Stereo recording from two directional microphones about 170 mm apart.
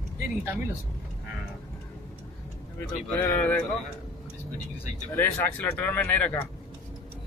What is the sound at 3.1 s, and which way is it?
Speech, 10° left (ahead or behind).